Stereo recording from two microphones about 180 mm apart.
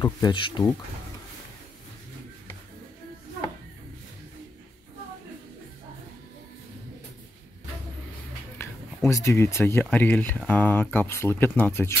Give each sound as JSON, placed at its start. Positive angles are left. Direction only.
{"t": 0.0, "sound": "speech", "side_deg": 25}
{"t": 8.5, "sound": "speech", "side_deg": 15}